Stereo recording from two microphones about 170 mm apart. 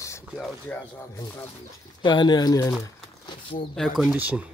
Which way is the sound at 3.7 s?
Centre (ahead or behind).